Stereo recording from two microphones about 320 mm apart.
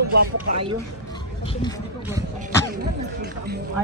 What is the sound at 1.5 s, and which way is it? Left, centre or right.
Speech, centre.